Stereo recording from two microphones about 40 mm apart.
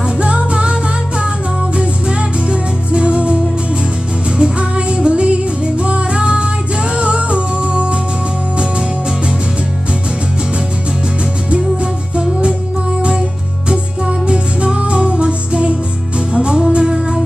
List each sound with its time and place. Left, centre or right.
0.2 s music: right
1.8 s music: right
4.4 s music: right
12.2 s music: right
13.7 s music: right